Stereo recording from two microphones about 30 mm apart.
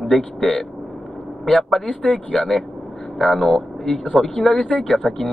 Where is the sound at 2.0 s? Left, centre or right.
Left.